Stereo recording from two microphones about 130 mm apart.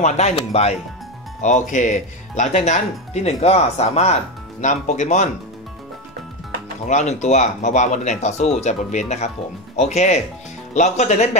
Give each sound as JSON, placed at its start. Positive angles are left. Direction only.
{"t": 0.0, "sound": "speech", "side_deg": 55}
{"t": 1.4, "sound": "speech", "side_deg": 70}
{"t": 6.9, "sound": "speech", "side_deg": 65}